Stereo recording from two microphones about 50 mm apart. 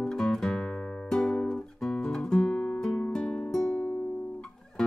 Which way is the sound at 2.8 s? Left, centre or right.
Centre.